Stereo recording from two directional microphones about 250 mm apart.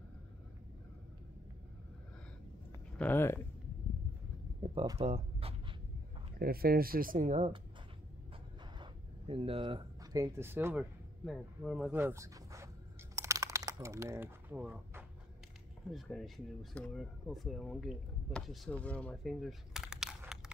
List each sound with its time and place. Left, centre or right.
3.0 s speech: centre
4.6 s a sound: right
6.4 s speech: right
9.3 s speech: right
13.1 s a sound: centre
15.9 s speech: centre